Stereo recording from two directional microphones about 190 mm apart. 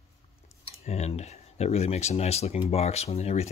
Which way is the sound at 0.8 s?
35° left (ahead or behind).